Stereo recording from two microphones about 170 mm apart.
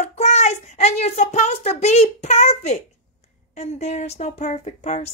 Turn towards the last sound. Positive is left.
turn(degrees=45)  # may be behind; listen again after turning